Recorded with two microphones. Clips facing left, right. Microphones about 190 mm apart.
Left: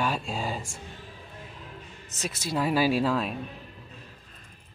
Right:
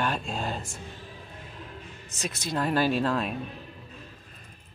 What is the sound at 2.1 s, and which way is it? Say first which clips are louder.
Speech: left 1 dB; 5° left (ahead or behind).